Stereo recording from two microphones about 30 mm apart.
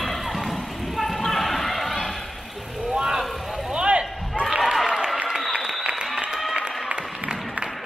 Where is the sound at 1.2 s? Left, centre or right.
Centre.